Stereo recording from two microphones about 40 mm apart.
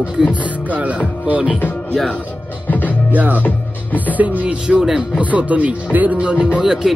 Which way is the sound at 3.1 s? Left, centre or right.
Right.